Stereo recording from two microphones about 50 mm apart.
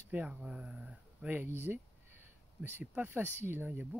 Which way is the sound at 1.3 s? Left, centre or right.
Right.